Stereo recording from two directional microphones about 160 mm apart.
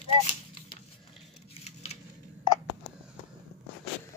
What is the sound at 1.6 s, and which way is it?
Scissors, 40° left (ahead or behind).